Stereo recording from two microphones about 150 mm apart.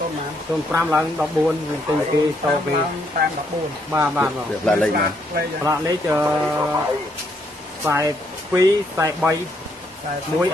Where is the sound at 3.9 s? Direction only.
10° right (ahead or behind).